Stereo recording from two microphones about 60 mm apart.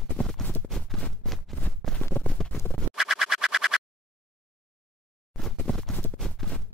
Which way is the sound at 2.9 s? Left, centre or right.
Centre.